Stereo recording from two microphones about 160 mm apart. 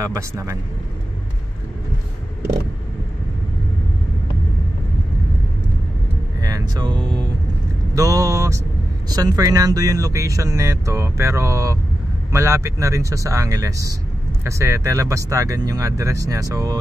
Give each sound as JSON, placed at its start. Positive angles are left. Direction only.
{"t": 0.0, "sound": "speech", "side_deg": -20}
{"t": 6.4, "sound": "speech", "side_deg": -25}